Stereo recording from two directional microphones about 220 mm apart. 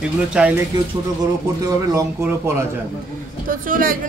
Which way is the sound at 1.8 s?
15° right (ahead or behind).